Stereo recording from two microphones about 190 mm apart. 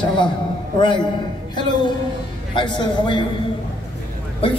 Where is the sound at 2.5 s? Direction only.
25° left (ahead or behind).